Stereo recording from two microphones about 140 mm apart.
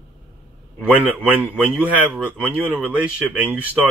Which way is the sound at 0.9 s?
10° right (ahead or behind).